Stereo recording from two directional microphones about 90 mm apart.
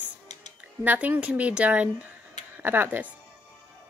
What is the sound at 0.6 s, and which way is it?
Speech, 15° right (ahead or behind).